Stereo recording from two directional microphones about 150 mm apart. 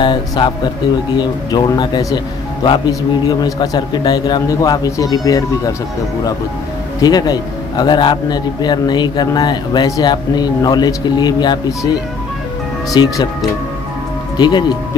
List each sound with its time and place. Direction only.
0.0 s speech: 30° left (ahead or behind)
7.0 s speech: 25° left (ahead or behind)